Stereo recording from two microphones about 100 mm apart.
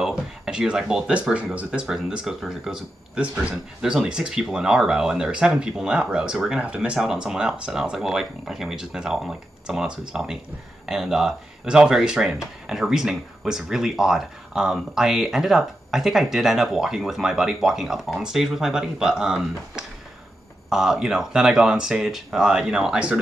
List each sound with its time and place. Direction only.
0.0 s speech: 10° right (ahead or behind)